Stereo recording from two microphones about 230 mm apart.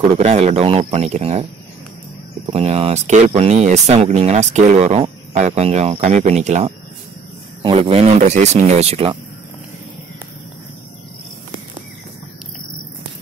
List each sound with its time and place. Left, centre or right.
0.1 s speech: right